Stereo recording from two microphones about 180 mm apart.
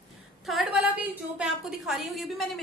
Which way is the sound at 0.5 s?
Centre (ahead or behind).